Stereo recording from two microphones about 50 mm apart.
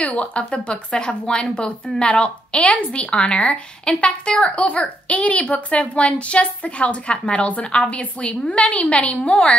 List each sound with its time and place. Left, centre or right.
0.0 s speech: left